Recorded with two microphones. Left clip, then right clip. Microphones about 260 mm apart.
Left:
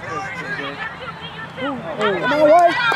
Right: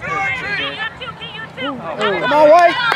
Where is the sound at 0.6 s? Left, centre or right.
Centre.